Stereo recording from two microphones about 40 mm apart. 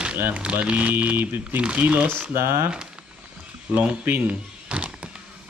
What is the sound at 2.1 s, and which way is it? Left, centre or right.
Speech, right.